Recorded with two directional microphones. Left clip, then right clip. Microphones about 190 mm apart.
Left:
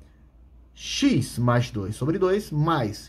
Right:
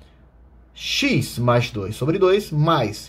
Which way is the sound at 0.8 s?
15° left (ahead or behind).